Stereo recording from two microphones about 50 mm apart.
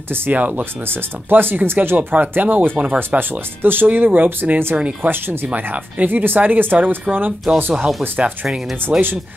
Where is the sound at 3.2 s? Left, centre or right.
Right.